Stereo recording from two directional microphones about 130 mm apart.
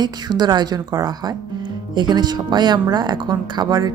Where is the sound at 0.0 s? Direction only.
35° right (ahead or behind).